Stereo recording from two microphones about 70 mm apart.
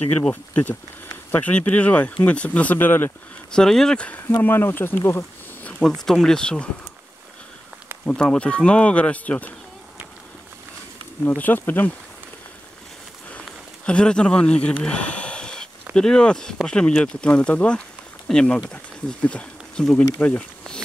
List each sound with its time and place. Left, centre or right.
0.3 s speech: left
3.5 s speech: centre
4.4 s speech: left
5.8 s speech: centre
8.0 s speech: centre
11.2 s speech: left
13.8 s speech: centre